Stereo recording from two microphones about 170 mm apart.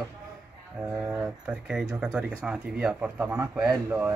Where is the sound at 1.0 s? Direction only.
10° right (ahead or behind).